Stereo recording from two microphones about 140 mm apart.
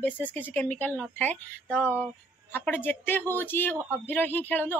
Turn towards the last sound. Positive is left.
turn(degrees=15)  # may be behind; listen again after turning